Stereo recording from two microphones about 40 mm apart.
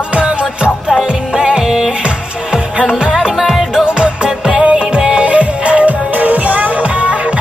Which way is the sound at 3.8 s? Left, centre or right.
Right.